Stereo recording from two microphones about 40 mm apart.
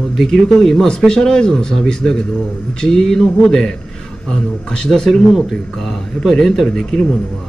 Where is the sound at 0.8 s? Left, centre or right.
Left.